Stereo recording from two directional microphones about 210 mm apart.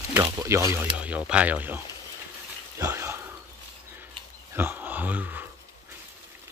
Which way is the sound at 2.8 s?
10° right (ahead or behind).